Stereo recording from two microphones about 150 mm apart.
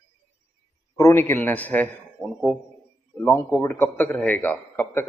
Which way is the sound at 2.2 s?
Centre (ahead or behind).